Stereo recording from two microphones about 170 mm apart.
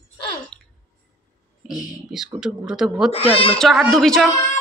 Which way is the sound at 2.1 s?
5° right (ahead or behind).